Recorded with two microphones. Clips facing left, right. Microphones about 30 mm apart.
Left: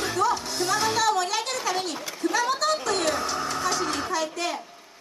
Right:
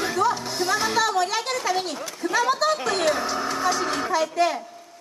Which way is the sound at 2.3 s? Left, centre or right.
Centre.